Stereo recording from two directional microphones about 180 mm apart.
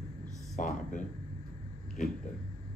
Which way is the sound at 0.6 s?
45° left (ahead or behind).